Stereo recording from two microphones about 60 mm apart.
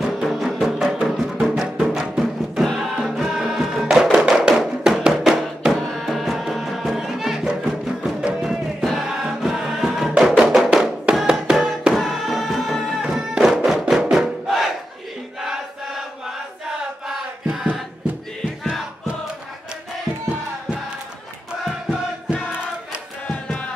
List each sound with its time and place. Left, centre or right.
0.0 s music: centre
5.8 s music: centre
13.0 s music: centre
23.2 s music: left